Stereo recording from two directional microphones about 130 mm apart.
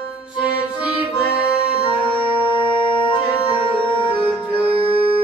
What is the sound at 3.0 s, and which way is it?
Music, 40° left (ahead or behind).